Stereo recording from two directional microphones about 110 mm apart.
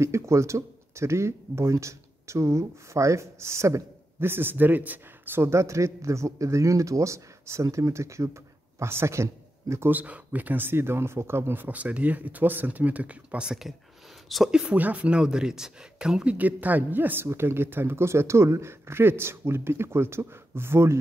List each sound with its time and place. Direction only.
0.0 s speech: 25° right (ahead or behind)